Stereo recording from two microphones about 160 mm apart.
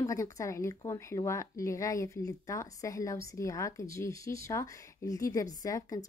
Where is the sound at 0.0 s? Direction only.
20° left (ahead or behind).